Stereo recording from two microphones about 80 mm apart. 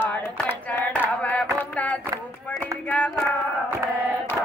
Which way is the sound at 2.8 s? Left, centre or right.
Centre.